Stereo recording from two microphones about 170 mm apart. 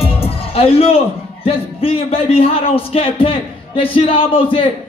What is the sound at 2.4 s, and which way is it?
Speech, 35° left (ahead or behind).